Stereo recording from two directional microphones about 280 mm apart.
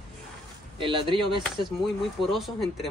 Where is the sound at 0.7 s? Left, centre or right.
Centre.